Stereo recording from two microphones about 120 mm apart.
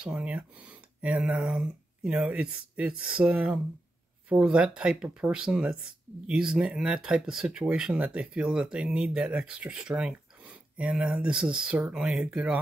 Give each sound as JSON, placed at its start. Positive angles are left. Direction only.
{"t": 0.0, "sound": "speech", "side_deg": -10}